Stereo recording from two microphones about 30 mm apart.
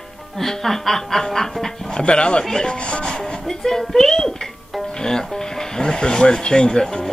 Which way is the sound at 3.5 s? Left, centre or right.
Centre.